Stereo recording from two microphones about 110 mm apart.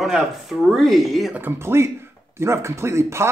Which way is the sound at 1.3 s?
20° right (ahead or behind).